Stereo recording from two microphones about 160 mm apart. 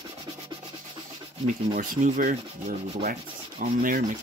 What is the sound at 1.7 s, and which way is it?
Rub, 60° right (ahead or behind).